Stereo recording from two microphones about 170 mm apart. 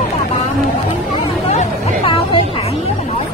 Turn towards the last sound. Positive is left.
turn(degrees=30)  # may be behind; listen again after turning